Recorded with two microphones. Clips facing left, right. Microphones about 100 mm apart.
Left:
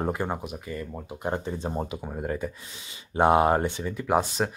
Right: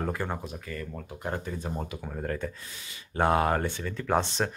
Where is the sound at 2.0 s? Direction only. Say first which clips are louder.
Left 2 dB; 15° left (ahead or behind).